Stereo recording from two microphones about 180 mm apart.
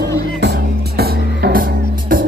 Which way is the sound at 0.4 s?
60° right (ahead or behind).